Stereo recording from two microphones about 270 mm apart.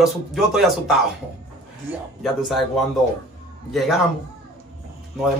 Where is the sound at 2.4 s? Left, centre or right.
Centre.